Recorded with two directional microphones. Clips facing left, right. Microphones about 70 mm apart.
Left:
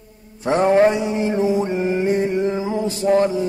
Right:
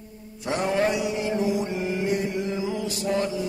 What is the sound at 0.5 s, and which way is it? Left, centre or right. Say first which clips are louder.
Mantra: left 9 dB; left.